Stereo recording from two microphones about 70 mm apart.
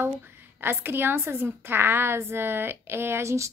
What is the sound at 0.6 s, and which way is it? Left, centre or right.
A woman's voice, right.